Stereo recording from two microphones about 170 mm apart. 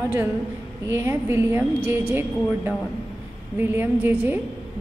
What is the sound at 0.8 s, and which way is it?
A woman's voice, 15° right (ahead or behind).